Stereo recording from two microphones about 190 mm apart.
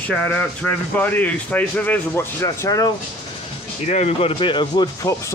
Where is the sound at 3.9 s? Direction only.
35° left (ahead or behind); by 5.3 s 15° left (ahead or behind).